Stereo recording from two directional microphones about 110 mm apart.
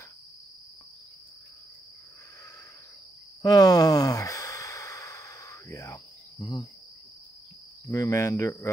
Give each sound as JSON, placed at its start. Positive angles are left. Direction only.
{"t": 3.4, "sound": "sigh", "side_deg": 35}
{"t": 6.4, "sound": "cricket", "side_deg": 35}
{"t": 7.8, "sound": "cricket", "side_deg": 30}